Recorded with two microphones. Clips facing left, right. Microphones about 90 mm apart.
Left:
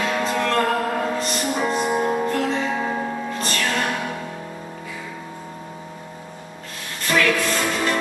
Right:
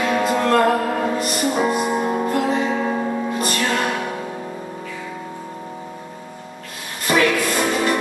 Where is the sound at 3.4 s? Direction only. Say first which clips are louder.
Right 3 dB; 15° right (ahead or behind).